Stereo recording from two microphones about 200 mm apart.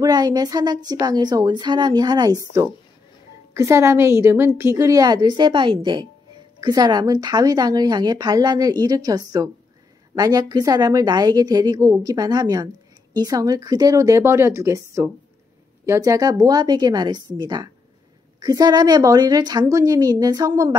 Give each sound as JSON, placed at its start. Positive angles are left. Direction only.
{"t": 0.0, "sound": "a woman's voice", "side_deg": -20}